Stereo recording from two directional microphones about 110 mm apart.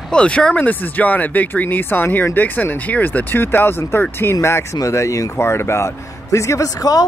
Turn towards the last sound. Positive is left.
turn(degrees=35)  # may be behind; listen again after turning